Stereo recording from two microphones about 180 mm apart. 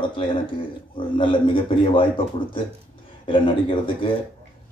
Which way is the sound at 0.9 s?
30° left (ahead or behind).